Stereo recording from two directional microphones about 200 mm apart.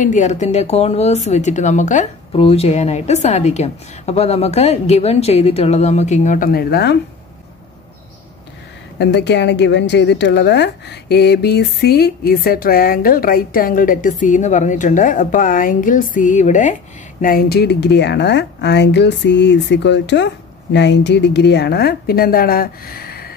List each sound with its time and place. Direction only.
0.0 s speech: 40° left (ahead or behind); by 7.0 s 55° left (ahead or behind)
8.9 s a woman's voice: 60° left (ahead or behind)